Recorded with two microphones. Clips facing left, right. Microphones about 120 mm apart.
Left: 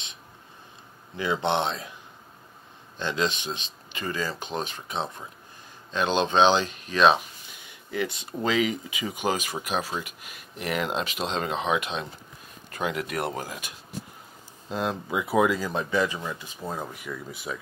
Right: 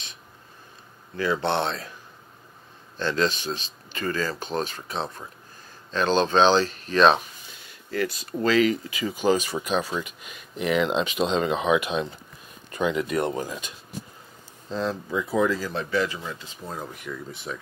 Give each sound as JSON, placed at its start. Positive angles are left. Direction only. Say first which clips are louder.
{"t": 1.1, "sound": "speech", "louder": "right 1 dB", "side_deg": 20}
{"t": 3.0, "sound": "speech", "louder": "right 3 dB", "side_deg": 15}